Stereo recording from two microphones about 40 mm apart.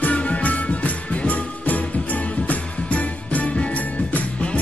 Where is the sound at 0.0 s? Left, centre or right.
Left.